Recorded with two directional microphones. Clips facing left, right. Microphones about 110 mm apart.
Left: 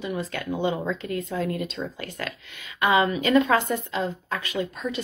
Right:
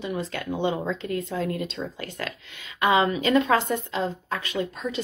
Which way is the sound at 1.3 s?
40° right (ahead or behind).